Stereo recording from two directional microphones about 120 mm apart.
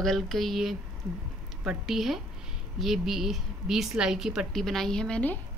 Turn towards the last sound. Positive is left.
turn(degrees=10)  # may be behind; listen again after turning